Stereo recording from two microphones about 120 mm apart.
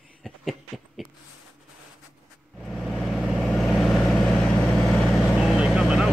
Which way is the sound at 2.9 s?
5° left (ahead or behind).